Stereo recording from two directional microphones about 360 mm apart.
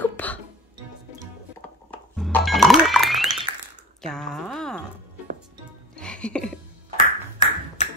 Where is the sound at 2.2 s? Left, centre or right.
Centre.